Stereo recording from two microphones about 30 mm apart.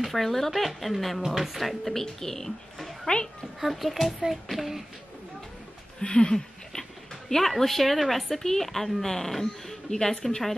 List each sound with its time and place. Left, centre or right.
0.1 s speech: centre
2.1 s speech: centre
3.1 s speech: left
3.6 s speech: centre
6.0 s speech: left
6.3 s speech: centre